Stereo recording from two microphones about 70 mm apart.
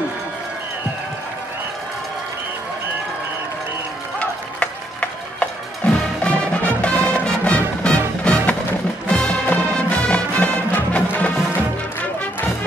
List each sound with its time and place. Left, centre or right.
4.2 s music: centre